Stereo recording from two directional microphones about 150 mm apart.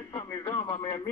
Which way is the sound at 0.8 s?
20° left (ahead or behind).